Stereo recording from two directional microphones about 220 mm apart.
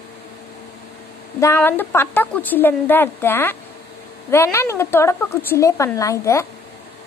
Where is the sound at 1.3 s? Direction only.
10° left (ahead or behind).